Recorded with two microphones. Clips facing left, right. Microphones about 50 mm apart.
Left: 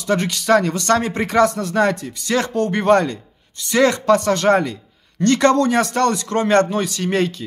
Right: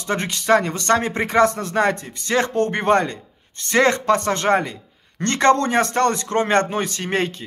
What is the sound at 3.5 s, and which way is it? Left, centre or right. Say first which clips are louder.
Speech: left 1 dB; right.